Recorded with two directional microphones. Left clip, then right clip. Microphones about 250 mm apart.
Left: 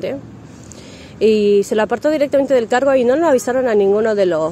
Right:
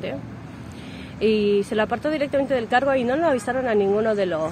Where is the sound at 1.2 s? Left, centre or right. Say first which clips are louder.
Left 7 dB; left.